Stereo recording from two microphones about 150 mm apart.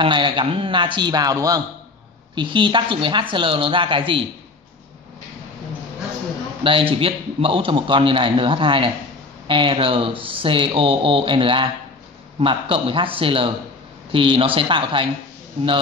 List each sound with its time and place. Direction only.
0.0 s a man's voice: 30° right (ahead or behind)
6.6 s a man's voice: 35° right (ahead or behind)